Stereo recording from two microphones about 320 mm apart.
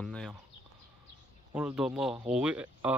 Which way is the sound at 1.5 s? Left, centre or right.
Centre.